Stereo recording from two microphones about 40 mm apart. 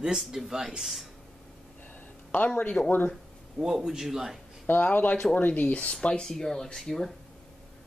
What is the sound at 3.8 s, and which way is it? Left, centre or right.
Speech, centre.